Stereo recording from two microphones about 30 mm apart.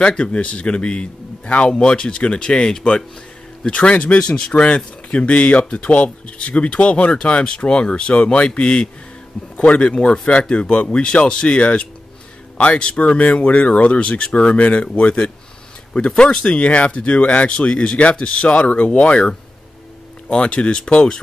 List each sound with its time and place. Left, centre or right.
0.0 s a man's voice: left
1.7 s a man's voice: left
3.7 s speech: left
4.3 s a man's voice: left
5.1 s speech: left
15.0 s speech: left
15.9 s a man's voice: left
20.2 s a man's voice: left